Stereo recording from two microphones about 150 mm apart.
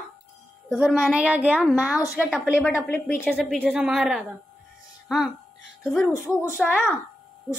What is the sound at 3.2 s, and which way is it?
Speech, 5° right (ahead or behind).